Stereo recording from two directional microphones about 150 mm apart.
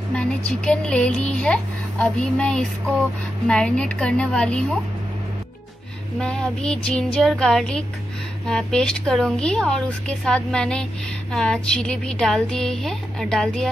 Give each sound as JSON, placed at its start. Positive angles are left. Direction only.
{"t": 0.1, "sound": "a woman's voice", "side_deg": 5}
{"t": 6.1, "sound": "a woman's voice", "side_deg": 5}